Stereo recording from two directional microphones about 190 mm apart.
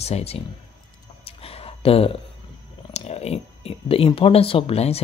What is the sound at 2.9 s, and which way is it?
Speech, 35° left (ahead or behind).